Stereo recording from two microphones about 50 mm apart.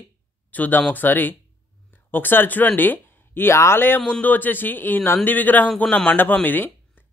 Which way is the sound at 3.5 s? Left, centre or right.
Left.